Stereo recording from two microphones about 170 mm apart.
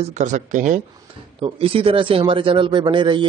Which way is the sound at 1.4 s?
35° right (ahead or behind).